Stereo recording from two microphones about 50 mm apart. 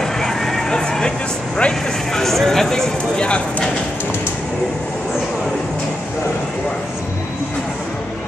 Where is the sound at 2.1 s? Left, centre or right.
Centre.